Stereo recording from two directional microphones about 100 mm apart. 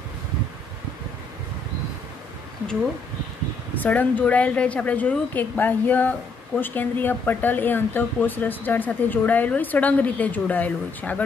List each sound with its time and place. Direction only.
2.6 s speech: 5° left (ahead or behind)